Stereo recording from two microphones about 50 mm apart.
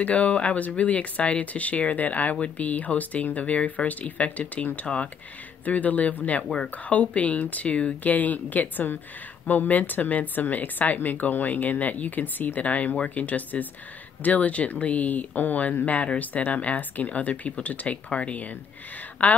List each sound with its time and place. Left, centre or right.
0.0 s speech: left